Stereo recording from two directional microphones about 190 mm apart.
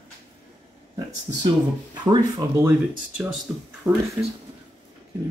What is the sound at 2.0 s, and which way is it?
Speech, 20° right (ahead or behind).